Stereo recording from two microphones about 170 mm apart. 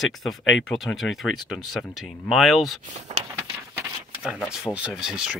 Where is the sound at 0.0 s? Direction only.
Centre (ahead or behind).